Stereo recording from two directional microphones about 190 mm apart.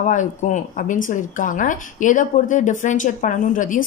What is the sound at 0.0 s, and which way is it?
A woman's voice, 40° left (ahead or behind).